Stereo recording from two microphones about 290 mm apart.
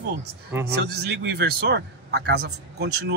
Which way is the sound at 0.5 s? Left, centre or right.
Centre.